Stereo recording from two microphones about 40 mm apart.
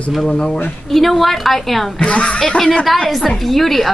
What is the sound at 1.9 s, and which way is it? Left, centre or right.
Speech, left.